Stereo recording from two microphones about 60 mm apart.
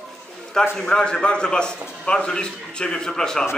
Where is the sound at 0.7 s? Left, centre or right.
Centre.